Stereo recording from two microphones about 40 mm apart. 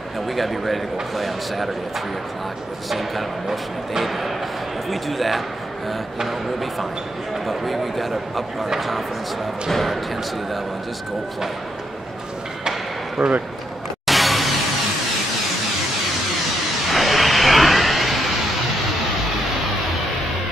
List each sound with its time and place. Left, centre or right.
0.4 s speech: centre
2.9 s speech: centre
13.2 s a man's voice: centre
14.0 s music: centre
16.9 s vehicle: centre